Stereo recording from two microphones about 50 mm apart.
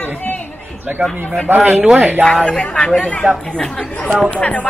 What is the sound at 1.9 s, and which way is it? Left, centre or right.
Speech, right.